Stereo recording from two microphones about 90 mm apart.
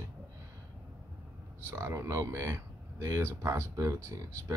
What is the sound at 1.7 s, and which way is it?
Speech, 25° right (ahead or behind).